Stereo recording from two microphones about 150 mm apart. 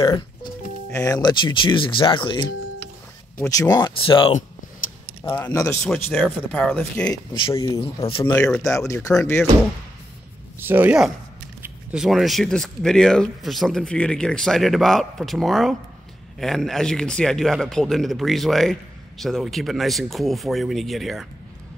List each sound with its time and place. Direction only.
0.0 s speech: 25° left (ahead or behind)
3.3 s speech: 20° left (ahead or behind)
5.2 s speech: 20° left (ahead or behind)
7.5 s speech: 20° left (ahead or behind)
7.8 s speech: 40° left (ahead or behind)
8.5 s speech: 20° left (ahead or behind)
10.6 s speech: 10° right (ahead or behind)